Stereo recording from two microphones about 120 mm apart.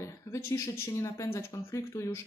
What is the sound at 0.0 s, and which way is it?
Speech, 25° left (ahead or behind).